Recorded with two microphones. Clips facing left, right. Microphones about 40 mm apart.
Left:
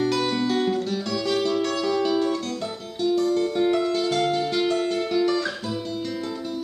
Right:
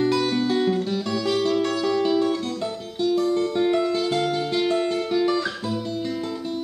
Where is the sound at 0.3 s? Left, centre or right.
Centre.